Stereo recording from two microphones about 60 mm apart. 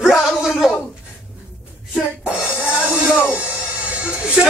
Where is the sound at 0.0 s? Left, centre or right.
Centre.